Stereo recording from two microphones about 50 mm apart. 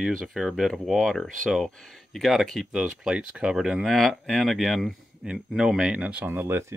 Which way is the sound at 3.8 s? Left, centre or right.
Centre.